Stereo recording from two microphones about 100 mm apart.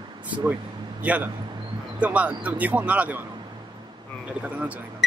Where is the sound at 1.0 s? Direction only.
15° right (ahead or behind).